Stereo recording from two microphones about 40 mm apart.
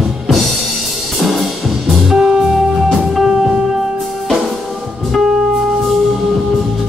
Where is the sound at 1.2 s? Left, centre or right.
Centre.